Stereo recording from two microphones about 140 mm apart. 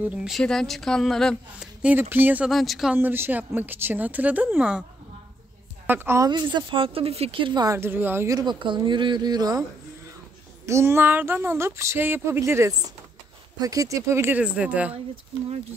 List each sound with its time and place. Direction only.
0.0 s speech: 5° right (ahead or behind)
0.4 s a woman's voice: 5° left (ahead or behind)
1.8 s speech: 10° right (ahead or behind)
2.5 s a woman's voice: centre (ahead or behind)
3.0 s speech: 15° right (ahead or behind)
5.9 s speech: 15° right (ahead or behind)
6.2 s speech: 35° right (ahead or behind); by 15.0 s 10° right (ahead or behind)